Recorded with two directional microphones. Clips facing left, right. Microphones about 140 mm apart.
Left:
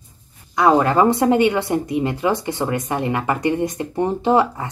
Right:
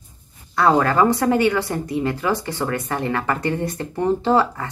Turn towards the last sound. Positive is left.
turn(degrees=20)  # may be behind; listen again after turning